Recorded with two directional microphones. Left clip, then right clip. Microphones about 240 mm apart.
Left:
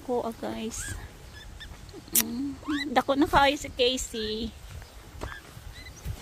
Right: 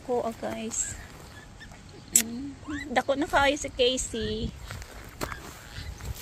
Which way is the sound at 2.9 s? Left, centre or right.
Left.